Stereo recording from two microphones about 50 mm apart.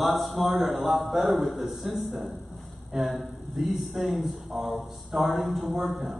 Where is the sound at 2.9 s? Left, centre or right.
Centre.